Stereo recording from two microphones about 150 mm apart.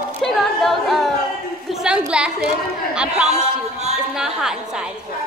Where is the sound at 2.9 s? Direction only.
5° right (ahead or behind).